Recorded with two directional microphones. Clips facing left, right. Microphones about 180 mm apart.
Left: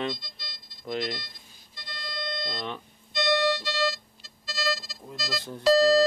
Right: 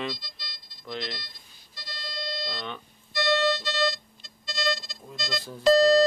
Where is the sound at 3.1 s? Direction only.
15° left (ahead or behind).